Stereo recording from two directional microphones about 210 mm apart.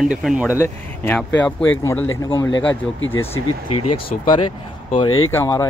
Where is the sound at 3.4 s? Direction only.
90° left.